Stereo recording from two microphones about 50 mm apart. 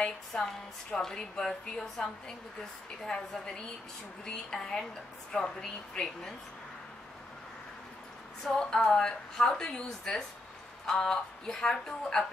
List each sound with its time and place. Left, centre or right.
0.0 s a woman's voice: centre
8.5 s a woman's voice: centre